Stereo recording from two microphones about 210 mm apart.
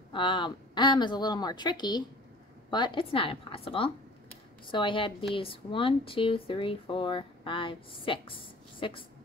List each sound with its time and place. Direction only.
0.1 s speech: 25° left (ahead or behind)